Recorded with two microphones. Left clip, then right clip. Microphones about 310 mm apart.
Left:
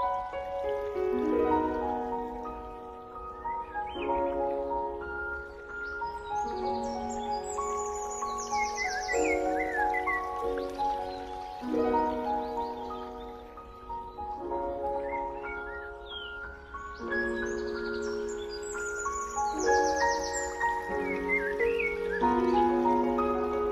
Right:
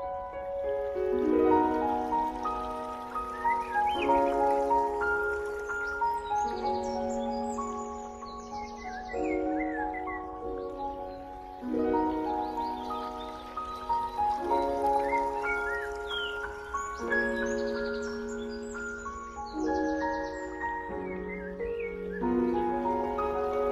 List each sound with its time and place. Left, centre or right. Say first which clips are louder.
0.7 s music: right 1 dB; centre
3.4 s music: right 7 dB; right
6.3 s music: right 2 dB; centre
9.1 s music: left 2 dB; left
11.7 s music: left 1 dB; centre
14.5 s music: right 2 dB; right
17.1 s music: right 2 dB; centre
19.4 s music: left 5 dB; left
20.2 s music: left 3 dB; left
21.7 s music: left 5 dB; left; by 23.7 s centre